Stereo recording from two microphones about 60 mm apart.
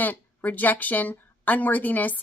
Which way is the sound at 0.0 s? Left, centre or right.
Left.